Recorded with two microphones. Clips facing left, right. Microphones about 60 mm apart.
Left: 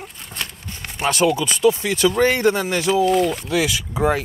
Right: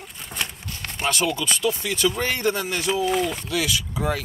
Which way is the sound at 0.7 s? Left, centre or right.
Left.